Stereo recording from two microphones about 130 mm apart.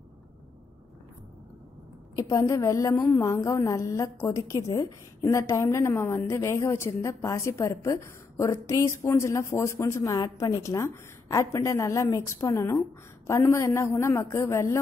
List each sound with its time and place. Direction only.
2.1 s a woman's voice: 25° left (ahead or behind)